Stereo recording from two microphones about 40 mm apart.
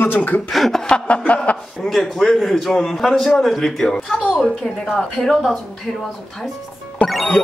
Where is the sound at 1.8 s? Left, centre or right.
Centre.